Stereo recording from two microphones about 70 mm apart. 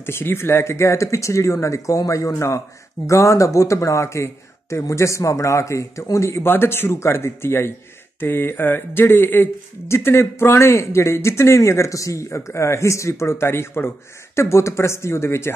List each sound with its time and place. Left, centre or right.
0.0 s speech: left
6.4 s speech: left